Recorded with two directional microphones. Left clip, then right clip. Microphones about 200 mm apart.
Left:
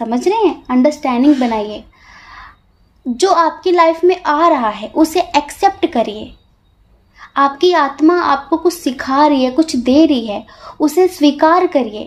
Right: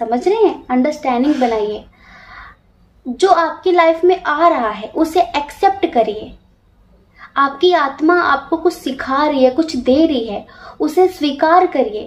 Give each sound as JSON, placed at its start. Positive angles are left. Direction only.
{"t": 0.0, "sound": "a woman's voice", "side_deg": 50}
{"t": 3.2, "sound": "a woman's voice", "side_deg": 45}